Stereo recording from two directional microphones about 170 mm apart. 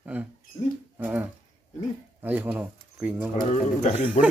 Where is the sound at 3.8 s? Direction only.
40° left (ahead or behind).